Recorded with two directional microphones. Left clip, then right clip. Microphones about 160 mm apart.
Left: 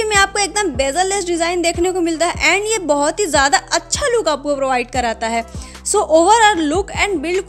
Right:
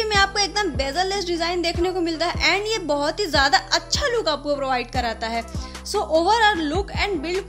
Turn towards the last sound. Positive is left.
turn(degrees=40)  # may be behind; listen again after turning